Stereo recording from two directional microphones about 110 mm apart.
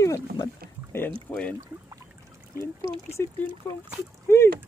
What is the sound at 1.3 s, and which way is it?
Speech, 10° left (ahead or behind).